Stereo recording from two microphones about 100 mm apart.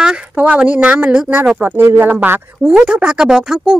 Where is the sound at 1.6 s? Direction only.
20° right (ahead or behind).